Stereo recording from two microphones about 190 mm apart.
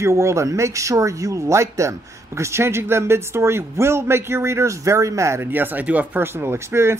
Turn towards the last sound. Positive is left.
turn(degrees=-15)  # may be behind; listen again after turning